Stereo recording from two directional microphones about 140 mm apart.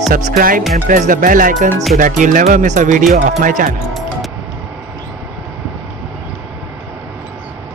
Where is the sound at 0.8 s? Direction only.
75° right (ahead or behind).